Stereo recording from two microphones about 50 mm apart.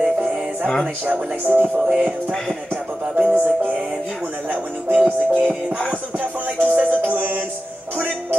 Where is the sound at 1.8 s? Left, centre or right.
Right.